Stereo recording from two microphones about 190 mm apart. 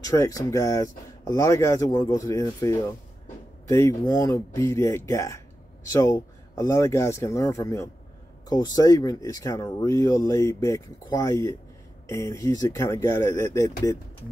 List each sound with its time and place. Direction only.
0.0 s speech: 15° left (ahead or behind)